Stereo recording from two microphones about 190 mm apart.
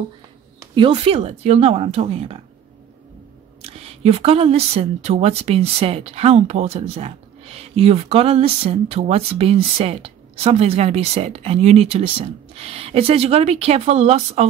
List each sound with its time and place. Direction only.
0.6 s speech: 25° right (ahead or behind)
3.6 s speech: 30° right (ahead or behind)